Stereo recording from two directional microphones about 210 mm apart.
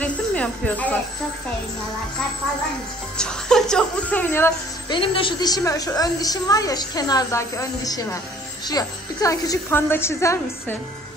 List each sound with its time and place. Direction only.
0.0 s music: 5° left (ahead or behind)
3.2 s a woman's voice: 5° left (ahead or behind)
4.9 s a woman's voice: 25° left (ahead or behind)